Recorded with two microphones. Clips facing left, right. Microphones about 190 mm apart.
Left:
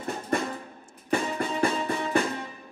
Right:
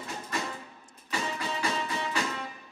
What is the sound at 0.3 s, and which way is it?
Music, 55° left (ahead or behind).